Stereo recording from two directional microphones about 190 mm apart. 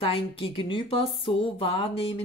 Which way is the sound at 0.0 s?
30° left (ahead or behind).